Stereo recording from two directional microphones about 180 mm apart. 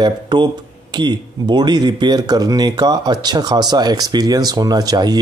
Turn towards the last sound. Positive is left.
turn(degrees=-20)  # may be behind; listen again after turning